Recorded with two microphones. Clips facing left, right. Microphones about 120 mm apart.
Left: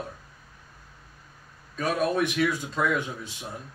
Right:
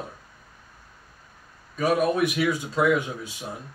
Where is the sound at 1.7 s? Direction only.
10° right (ahead or behind).